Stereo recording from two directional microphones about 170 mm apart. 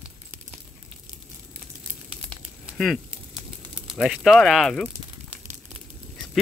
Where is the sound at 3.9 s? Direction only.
5° right (ahead or behind).